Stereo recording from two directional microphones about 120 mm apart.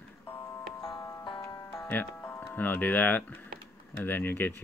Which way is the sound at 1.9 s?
15° left (ahead or behind).